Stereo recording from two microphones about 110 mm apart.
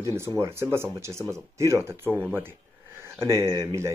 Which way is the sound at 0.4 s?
25° right (ahead or behind).